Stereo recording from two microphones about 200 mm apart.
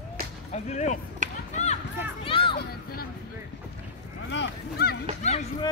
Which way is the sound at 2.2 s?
25° left (ahead or behind).